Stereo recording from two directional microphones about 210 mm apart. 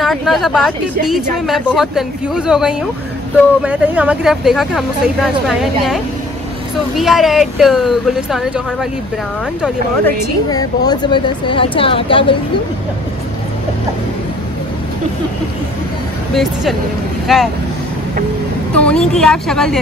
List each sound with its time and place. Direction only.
0.0 s speech: centre (ahead or behind)
7.0 s speech: centre (ahead or behind)
10.0 s a woman's voice: 20° left (ahead or behind)
17.3 s speech: centre (ahead or behind)
18.8 s speech: 5° left (ahead or behind)